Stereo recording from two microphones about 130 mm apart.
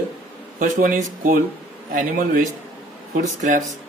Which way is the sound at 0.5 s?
80° right.